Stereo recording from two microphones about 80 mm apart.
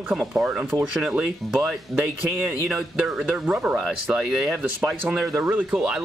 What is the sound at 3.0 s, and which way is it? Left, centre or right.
Speech, right.